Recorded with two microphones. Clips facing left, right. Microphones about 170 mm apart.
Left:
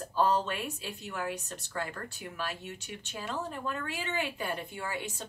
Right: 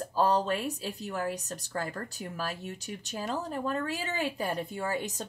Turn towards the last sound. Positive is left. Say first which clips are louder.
# right 5 dB
turn(degrees=-40)  # may be behind; listen again after turning